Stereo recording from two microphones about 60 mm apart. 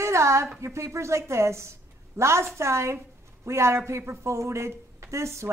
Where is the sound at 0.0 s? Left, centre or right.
Right.